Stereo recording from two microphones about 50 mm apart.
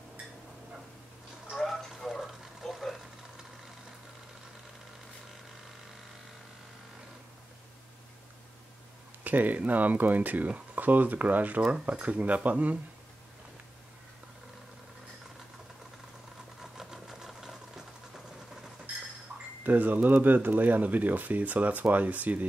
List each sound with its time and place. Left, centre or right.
1.7 s a sound: centre
2.0 s water: centre
2.7 s a sound: centre
9.2 s speech: right
16.7 s engine knocking: centre
19.6 s speech: right